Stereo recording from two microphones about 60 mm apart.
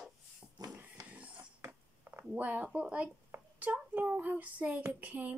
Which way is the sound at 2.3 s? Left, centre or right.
Right.